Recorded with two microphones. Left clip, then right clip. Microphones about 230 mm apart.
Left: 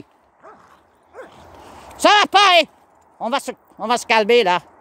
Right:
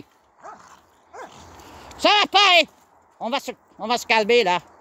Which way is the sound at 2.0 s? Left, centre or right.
Left.